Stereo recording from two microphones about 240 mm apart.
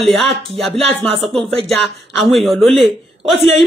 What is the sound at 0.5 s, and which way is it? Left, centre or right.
Speech, centre.